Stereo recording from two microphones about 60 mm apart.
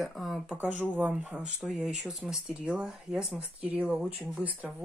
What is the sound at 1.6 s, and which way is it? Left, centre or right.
Speech, centre.